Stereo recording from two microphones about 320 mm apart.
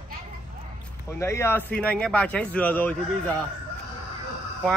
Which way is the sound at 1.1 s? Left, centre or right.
Centre.